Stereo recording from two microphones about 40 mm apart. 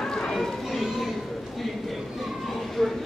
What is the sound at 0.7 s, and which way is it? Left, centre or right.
Children playing, centre.